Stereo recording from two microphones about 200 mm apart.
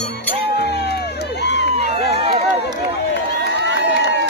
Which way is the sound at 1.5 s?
60° left (ahead or behind).